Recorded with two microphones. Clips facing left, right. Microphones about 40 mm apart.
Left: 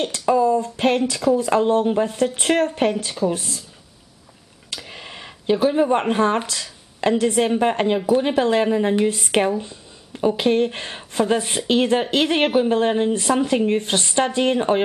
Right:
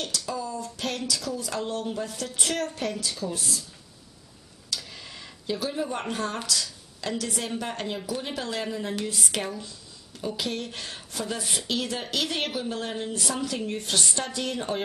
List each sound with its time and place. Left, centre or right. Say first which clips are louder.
0.3 s speech: left 15 dB; left
4.8 s speech: left 6 dB; left